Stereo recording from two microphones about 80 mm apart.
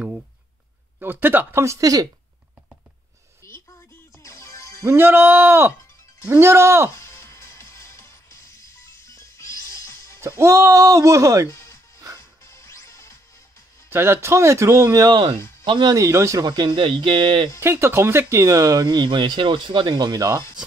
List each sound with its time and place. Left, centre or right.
0.9 s speech: right
1.6 s speech: right
4.2 s music: left
4.8 s speech: right
7.0 s music: left
10.4 s speech: right
11.5 s music: left
13.8 s speech: right
15.0 s speech: right
15.9 s speech: right
16.4 s speech: right
17.6 s speech: right